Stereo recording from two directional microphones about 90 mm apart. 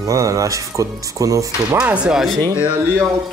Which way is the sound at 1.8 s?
15° right (ahead or behind).